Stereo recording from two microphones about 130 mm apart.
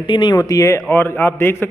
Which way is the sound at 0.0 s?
35° left (ahead or behind).